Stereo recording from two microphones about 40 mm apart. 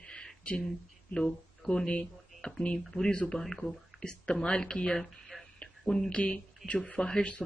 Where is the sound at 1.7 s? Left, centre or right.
Left.